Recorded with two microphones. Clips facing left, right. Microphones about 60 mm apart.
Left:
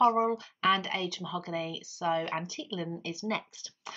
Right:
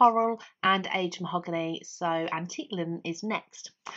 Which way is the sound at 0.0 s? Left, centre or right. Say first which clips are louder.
Right 3 dB; centre.